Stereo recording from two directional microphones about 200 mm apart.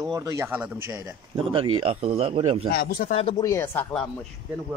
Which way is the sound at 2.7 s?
50° left (ahead or behind).